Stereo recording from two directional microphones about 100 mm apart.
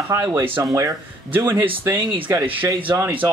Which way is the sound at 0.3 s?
25° right (ahead or behind).